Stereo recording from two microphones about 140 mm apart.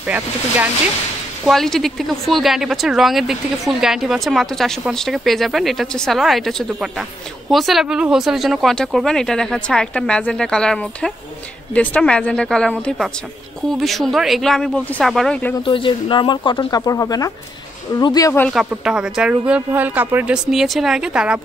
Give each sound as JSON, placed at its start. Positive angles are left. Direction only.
{"t": 0.0, "sound": "speech", "side_deg": -10}
{"t": 1.4, "sound": "a woman's voice", "side_deg": 0}
{"t": 15.6, "sound": "speech", "side_deg": 35}
{"t": 18.5, "sound": "speech", "side_deg": -5}
{"t": 20.5, "sound": "a woman's voice", "side_deg": 0}